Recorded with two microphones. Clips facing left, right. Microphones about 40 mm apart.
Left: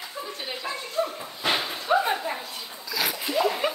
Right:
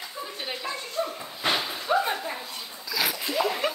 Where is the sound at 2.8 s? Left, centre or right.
Centre.